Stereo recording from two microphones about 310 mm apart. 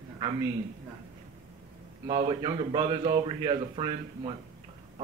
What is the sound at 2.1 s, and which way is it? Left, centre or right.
A man's voice, centre.